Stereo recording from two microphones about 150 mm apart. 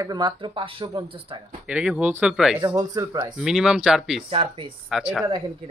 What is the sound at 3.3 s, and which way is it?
Speech, 5° right (ahead or behind).